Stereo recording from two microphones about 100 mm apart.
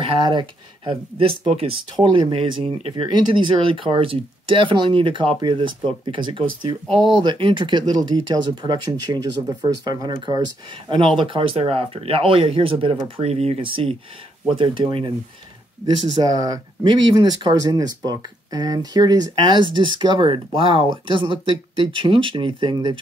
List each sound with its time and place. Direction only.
0.0 s speech: 50° right (ahead or behind)
1.4 s speech: 90° right
2.0 s speech: 50° right (ahead or behind)
2.6 s speech: 60° right (ahead or behind)
13.2 s speech: 90° right; by 15.1 s 55° right (ahead or behind)
15.8 s speech: 40° right (ahead or behind)